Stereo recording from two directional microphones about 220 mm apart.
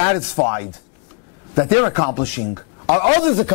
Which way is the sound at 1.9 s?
10° left (ahead or behind).